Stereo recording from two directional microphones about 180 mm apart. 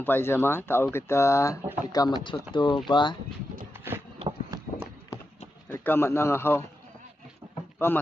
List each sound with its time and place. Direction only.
0.0 s speech: 10° left (ahead or behind)
4.2 s a sound: 25° right (ahead or behind)
5.7 s a man's voice: 15° left (ahead or behind)
7.8 s speech: 15° left (ahead or behind)